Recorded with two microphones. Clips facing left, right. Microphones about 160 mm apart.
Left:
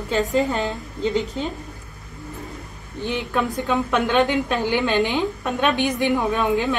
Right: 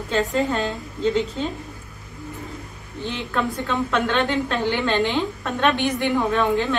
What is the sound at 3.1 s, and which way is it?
A woman's voice, 15° left (ahead or behind).